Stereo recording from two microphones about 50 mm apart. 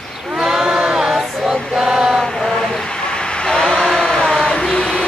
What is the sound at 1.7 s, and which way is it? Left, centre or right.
Mantra, centre.